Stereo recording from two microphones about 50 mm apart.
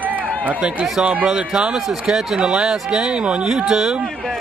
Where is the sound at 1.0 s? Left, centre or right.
Right.